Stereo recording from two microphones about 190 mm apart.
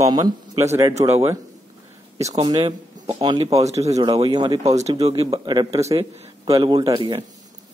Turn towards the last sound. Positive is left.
turn(degrees=-20)  # may be behind; listen again after turning